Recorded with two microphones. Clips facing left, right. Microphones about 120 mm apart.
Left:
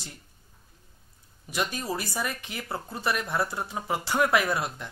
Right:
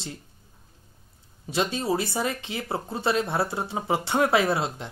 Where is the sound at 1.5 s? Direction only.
25° right (ahead or behind).